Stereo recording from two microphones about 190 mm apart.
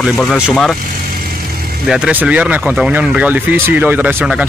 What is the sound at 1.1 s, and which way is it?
Vehicle, 50° right (ahead or behind).